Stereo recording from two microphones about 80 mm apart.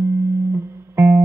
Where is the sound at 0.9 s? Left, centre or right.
Right.